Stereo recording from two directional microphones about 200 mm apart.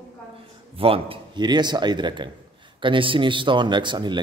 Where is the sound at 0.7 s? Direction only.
30° right (ahead or behind).